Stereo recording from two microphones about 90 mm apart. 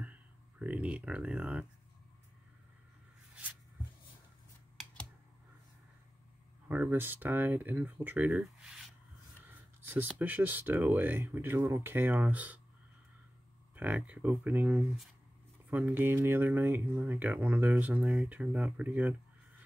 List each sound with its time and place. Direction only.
0.6 s speech: 15° right (ahead or behind)
6.7 s speech: 20° right (ahead or behind)
9.8 s a sound: 20° right (ahead or behind)
10.1 s speech: 20° right (ahead or behind)
13.7 s speech: 20° right (ahead or behind)